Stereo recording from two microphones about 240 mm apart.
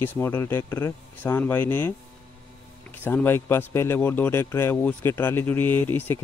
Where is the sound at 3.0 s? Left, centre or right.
Centre.